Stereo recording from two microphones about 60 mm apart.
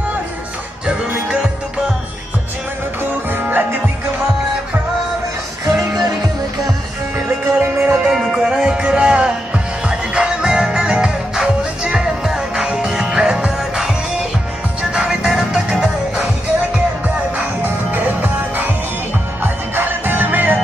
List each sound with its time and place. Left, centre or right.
3.0 s music: right
7.5 s music: right
8.1 s music: centre
17.9 s music: right
19.4 s music: right